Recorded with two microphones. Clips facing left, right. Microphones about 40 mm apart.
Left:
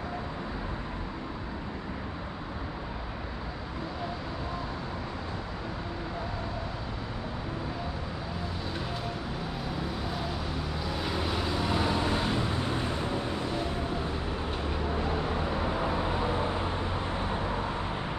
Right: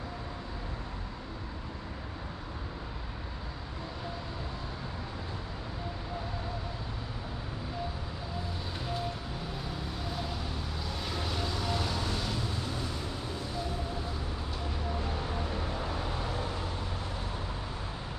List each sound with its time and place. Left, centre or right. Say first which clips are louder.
10.9 s vehicle: left 5 dB; centre; by 13.7 s left
15.0 s vehicle: left 5 dB; left